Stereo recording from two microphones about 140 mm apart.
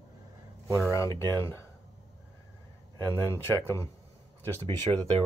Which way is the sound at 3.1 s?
15° left (ahead or behind).